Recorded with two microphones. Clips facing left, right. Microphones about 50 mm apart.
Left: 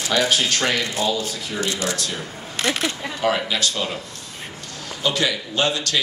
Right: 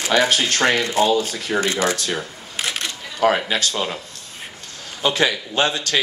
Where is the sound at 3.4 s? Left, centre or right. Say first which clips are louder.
Right 1 dB; right.